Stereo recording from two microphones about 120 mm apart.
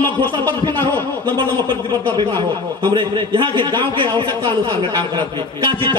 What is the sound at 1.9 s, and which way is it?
A man's voice, 35° right (ahead or behind).